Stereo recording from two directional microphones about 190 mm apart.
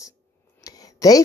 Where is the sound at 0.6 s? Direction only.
20° left (ahead or behind).